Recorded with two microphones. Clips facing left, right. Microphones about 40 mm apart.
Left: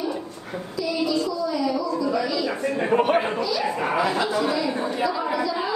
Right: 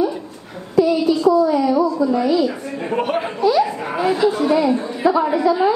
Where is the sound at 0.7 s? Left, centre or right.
Right.